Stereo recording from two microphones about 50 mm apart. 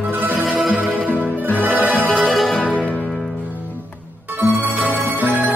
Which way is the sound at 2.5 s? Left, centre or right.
Left.